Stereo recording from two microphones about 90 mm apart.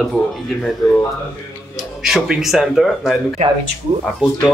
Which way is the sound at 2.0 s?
5° right (ahead or behind).